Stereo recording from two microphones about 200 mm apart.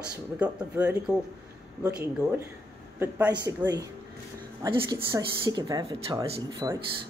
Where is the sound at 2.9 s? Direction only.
10° right (ahead or behind).